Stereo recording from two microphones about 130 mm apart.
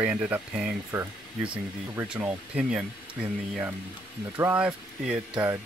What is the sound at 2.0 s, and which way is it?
Speech, 10° right (ahead or behind).